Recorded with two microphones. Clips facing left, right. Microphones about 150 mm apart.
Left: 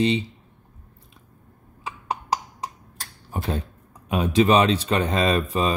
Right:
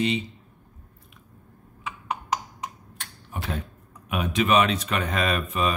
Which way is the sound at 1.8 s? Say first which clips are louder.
Left 2 dB; 35° left (ahead or behind).